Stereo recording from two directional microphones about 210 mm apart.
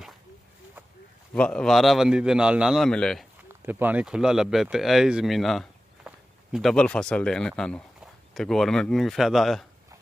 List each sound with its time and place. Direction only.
1.3 s a man's voice: 5° left (ahead or behind)
3.6 s a man's voice: 10° right (ahead or behind)